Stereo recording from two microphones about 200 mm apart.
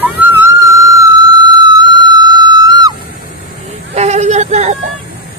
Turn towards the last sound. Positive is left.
turn(degrees=-35)  # may be behind; listen again after turning